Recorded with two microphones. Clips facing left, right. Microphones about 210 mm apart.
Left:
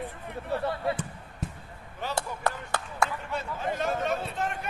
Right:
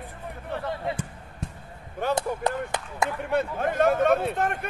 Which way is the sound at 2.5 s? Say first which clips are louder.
Right 3 dB; 20° right (ahead or behind).